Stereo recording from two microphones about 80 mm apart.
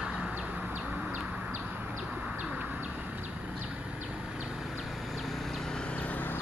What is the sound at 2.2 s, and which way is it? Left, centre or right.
Bird, centre.